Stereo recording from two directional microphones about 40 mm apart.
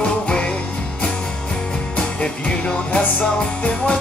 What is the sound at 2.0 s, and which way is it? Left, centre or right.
Music, left.